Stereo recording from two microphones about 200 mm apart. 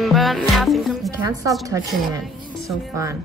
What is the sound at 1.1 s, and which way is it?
Speech, 15° right (ahead or behind).